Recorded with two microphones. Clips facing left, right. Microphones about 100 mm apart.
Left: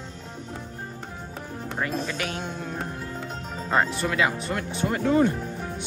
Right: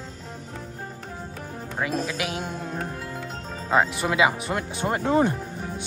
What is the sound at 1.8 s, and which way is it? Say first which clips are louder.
Speech: right 2 dB; 5° right (ahead or behind).